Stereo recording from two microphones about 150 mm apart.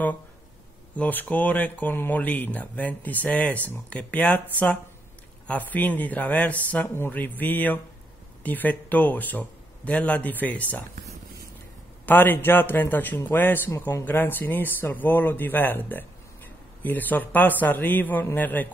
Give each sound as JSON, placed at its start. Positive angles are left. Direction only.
{"t": 0.9, "sound": "speech", "side_deg": 10}
{"t": 12.1, "sound": "speech", "side_deg": 15}